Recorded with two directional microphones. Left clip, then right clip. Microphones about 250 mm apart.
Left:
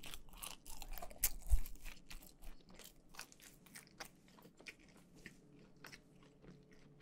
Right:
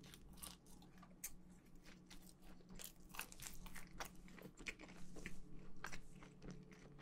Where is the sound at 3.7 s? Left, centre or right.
Centre.